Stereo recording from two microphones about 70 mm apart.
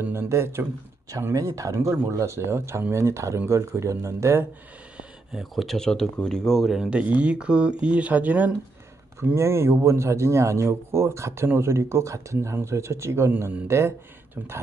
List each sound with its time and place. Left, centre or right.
0.0 s a man's voice: right
1.3 s a man's voice: right
5.4 s speech: centre
6.7 s speech: centre
7.0 s speech: centre
9.2 s a man's voice: right